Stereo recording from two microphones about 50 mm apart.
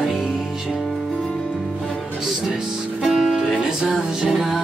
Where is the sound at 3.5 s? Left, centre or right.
Centre.